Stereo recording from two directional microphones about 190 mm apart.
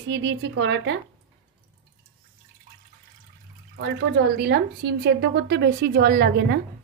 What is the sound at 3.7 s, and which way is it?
A woman's voice, 60° right (ahead or behind).